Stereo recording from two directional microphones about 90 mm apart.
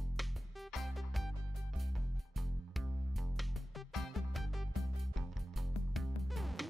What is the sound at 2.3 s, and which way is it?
Music, centre (ahead or behind).